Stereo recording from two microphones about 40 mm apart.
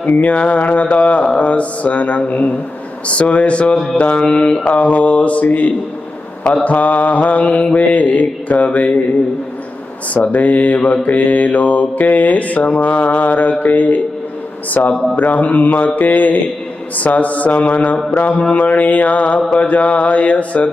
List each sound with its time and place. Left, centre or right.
0.0 s mantra: left
10.1 s mantra: left